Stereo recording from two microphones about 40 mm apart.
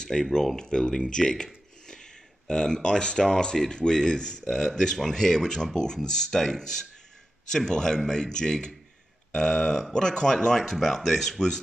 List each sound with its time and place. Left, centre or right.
0.0 s speech: centre